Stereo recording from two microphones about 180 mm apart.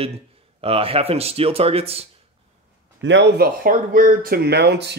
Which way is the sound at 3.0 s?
85° right.